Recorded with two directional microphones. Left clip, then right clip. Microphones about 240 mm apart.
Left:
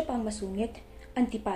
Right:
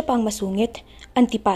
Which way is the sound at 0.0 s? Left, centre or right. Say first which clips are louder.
Right 10 dB; right.